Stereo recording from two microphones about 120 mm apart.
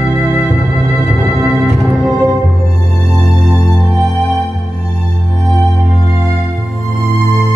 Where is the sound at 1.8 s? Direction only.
30° right (ahead or behind).